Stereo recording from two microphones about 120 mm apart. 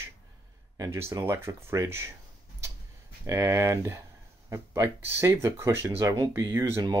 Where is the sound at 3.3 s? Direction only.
25° right (ahead or behind).